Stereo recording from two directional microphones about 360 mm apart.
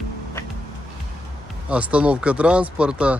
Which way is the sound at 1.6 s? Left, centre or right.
Centre.